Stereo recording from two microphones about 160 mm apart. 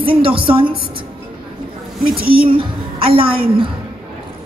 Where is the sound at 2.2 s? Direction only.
65° right (ahead or behind).